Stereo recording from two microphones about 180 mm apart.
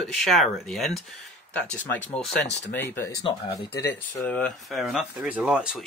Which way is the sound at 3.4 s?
65° left (ahead or behind).